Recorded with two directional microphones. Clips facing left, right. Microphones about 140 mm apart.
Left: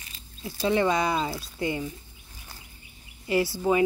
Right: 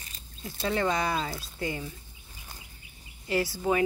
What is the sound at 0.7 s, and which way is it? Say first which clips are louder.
Speech: left 4 dB; 15° left (ahead or behind).